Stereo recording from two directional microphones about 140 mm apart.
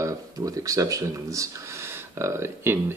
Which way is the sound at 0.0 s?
25° right (ahead or behind).